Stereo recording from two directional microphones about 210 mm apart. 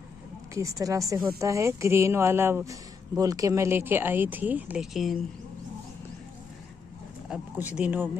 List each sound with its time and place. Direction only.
0.6 s speech: 15° right (ahead or behind); by 5.2 s centre (ahead or behind)
7.2 s speech: 5° right (ahead or behind)